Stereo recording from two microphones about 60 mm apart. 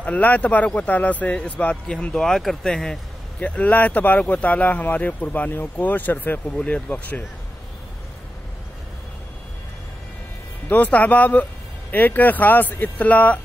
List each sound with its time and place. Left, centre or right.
0.0 s speech: left
3.3 s speech: left
6.5 s speech: centre
10.7 s speech: left